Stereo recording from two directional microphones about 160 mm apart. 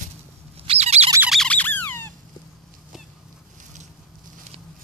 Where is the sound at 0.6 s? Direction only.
40° right (ahead or behind).